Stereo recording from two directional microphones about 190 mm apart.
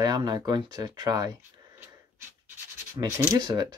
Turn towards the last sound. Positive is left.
turn(degrees=-20)  # may be behind; listen again after turning